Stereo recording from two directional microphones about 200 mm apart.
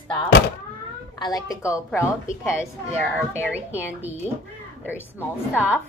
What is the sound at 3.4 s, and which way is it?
Speech, 10° right (ahead or behind).